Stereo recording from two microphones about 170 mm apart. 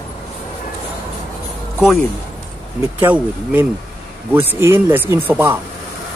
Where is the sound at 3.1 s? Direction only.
10° right (ahead or behind).